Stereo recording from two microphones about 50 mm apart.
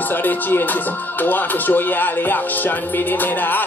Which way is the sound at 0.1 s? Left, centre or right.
Left.